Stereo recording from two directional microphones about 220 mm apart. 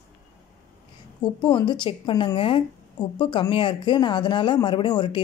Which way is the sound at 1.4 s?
20° left (ahead or behind).